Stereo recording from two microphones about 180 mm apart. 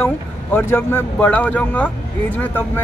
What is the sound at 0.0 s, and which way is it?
Speech, 10° left (ahead or behind).